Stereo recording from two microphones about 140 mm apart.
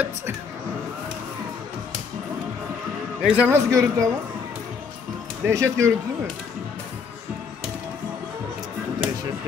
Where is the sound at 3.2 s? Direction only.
10° right (ahead or behind).